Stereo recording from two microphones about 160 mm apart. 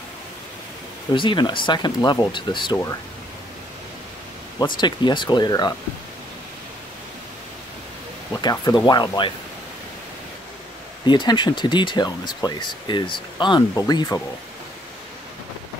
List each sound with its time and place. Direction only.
1.1 s speech: 30° left (ahead or behind)
4.6 s speech: 25° left (ahead or behind)
8.3 s speech: 25° left (ahead or behind)
11.1 s speech: 30° left (ahead or behind)